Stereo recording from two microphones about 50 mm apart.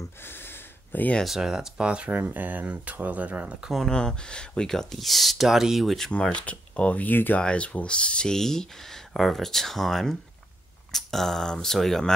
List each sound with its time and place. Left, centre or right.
0.2 s a sound: left
1.2 s speech: centre
2.0 s speech: right
3.8 s speech: centre
6.4 s speech: left
7.3 s speech: left; by 12.1 s centre